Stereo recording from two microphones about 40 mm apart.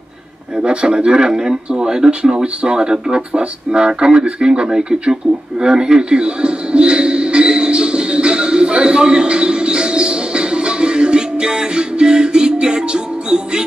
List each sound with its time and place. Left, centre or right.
0.6 s speech: right